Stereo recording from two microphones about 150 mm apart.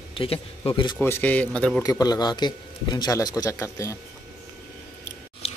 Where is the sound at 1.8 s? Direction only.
25° left (ahead or behind).